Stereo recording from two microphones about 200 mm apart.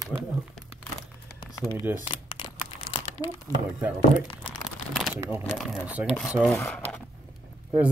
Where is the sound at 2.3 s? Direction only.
25° left (ahead or behind).